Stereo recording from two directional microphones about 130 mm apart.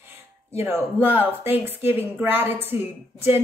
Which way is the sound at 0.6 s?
20° right (ahead or behind).